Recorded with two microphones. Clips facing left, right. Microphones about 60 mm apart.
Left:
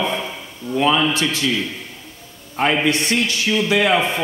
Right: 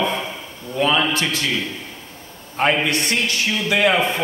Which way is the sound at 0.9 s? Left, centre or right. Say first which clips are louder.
Left 1 dB; right.